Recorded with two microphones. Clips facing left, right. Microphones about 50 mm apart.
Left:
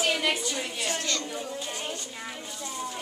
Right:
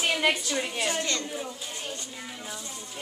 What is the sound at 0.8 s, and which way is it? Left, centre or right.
Speech, right.